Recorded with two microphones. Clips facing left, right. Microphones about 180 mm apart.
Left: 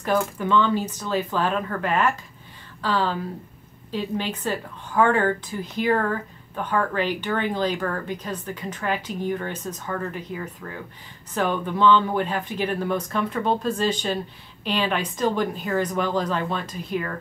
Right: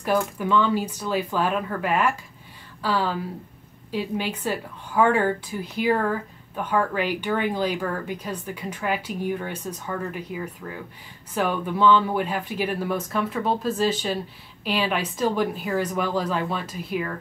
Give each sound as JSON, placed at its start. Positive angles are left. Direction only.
{"t": 0.2, "sound": "speech", "side_deg": -5}